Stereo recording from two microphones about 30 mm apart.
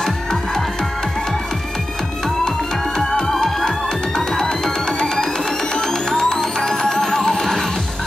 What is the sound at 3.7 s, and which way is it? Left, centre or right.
Music, left.